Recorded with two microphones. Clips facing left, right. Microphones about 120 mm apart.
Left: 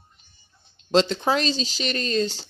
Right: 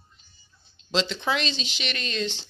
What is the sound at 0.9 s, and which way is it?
Speech, 45° left (ahead or behind).